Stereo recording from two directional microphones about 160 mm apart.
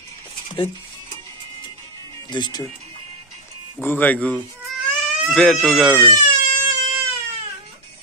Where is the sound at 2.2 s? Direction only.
25° left (ahead or behind).